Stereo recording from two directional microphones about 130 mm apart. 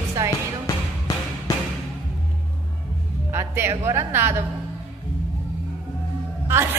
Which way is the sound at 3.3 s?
20° right (ahead or behind).